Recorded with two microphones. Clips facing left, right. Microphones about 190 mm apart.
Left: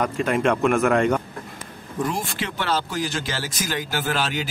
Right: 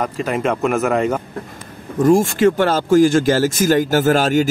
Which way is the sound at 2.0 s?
45° right (ahead or behind).